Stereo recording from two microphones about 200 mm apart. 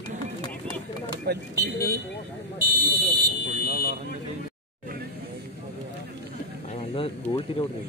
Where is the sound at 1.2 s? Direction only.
50° right (ahead or behind).